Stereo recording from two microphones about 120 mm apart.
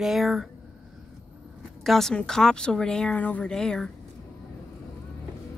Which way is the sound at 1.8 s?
Centre (ahead or behind).